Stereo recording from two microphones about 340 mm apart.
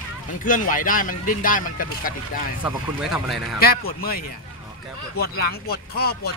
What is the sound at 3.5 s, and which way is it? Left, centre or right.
Speech, left.